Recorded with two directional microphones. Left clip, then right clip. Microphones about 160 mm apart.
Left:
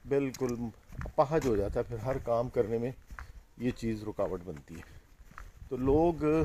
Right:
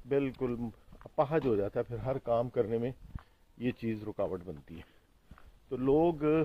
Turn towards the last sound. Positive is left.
turn(degrees=15)  # may be behind; listen again after turning